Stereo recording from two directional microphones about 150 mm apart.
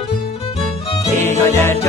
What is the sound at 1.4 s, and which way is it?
Music, 15° left (ahead or behind).